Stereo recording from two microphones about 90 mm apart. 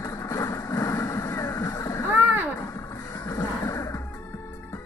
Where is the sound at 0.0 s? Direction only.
35° left (ahead or behind).